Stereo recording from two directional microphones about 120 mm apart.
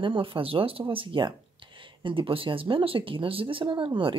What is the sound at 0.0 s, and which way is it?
Speech, 45° right (ahead or behind).